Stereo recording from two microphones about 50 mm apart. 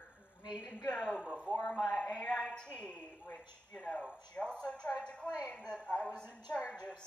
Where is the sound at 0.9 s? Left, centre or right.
Centre.